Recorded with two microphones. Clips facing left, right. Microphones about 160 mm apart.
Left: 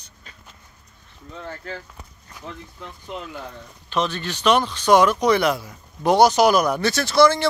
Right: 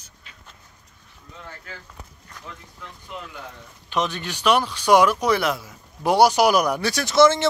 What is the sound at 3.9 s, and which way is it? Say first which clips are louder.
Speech: left 1 dB; 15° right (ahead or behind).